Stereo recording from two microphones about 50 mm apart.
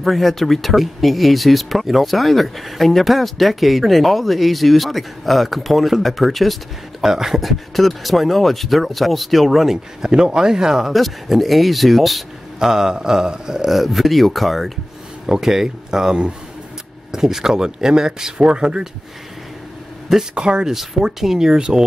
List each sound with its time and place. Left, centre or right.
0.0 s speech: centre
10.9 s speech: centre
20.3 s speech: centre
20.7 s speech: centre